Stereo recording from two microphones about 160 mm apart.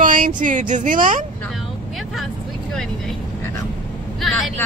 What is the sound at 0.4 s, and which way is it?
Speech, 55° right (ahead or behind).